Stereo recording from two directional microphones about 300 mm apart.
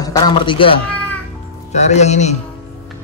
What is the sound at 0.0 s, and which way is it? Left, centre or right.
A man's voice, centre.